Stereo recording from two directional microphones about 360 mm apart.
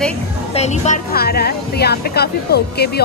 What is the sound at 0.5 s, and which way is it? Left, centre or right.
A woman's voice, centre.